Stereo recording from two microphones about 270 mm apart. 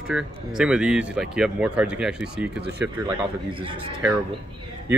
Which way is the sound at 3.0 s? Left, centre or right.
Centre.